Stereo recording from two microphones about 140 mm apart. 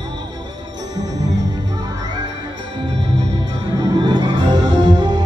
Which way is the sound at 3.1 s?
30° right (ahead or behind).